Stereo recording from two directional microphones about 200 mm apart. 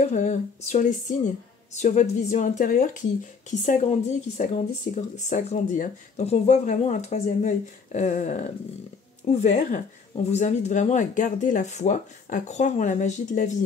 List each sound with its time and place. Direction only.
0.0 s speech: 35° left (ahead or behind)